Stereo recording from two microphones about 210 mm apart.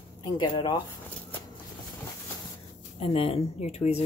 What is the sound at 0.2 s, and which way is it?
Speech, 20° left (ahead or behind).